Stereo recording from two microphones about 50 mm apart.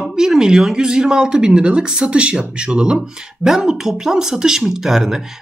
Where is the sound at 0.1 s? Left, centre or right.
Centre.